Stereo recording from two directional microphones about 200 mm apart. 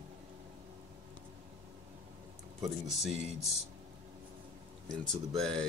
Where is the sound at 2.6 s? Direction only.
Centre (ahead or behind).